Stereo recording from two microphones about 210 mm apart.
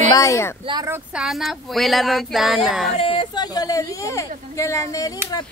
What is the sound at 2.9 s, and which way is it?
Speech, 25° left (ahead or behind).